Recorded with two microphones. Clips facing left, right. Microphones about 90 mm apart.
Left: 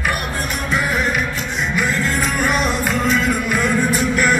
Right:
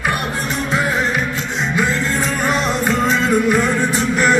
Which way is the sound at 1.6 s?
30° right (ahead or behind).